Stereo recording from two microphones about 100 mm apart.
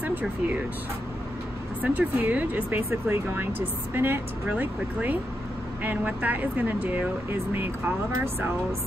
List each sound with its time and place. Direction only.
0.0 s speech: 15° right (ahead or behind)
1.8 s speech: 15° right (ahead or behind)